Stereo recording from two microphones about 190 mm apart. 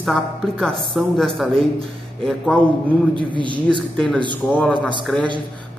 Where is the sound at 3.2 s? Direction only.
25° right (ahead or behind).